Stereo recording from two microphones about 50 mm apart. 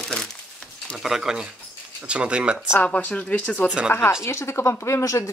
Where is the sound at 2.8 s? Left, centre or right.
Left.